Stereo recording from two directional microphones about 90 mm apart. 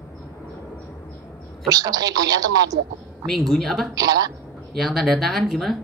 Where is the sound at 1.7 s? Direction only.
45° right (ahead or behind).